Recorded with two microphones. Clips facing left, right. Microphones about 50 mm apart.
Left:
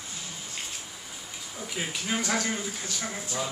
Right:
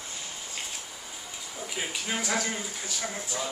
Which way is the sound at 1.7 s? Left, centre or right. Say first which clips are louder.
Left 2 dB; centre.